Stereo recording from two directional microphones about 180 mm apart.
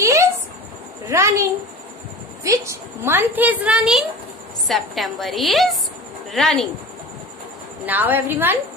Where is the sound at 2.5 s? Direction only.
15° right (ahead or behind); by 6.6 s centre (ahead or behind).